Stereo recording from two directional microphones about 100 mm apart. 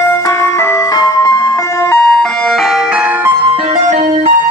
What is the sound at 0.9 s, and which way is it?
Music, 40° left (ahead or behind).